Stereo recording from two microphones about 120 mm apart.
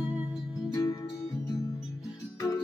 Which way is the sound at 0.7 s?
25° left (ahead or behind).